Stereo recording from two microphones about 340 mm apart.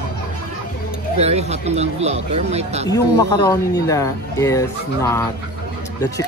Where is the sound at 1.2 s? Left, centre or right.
Centre.